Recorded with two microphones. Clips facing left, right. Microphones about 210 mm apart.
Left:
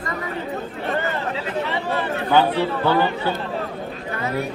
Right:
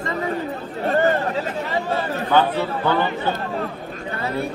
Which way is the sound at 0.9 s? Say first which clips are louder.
Right 6 dB; 45° right (ahead or behind).